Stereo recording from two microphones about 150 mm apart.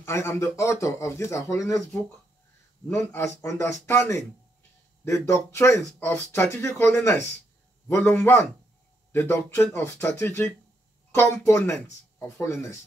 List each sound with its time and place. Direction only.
0.0 s speech: 20° left (ahead or behind)
2.9 s speech: 15° left (ahead or behind)